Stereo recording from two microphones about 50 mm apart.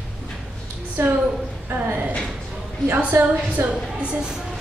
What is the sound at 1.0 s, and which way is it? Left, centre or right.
Speech, right.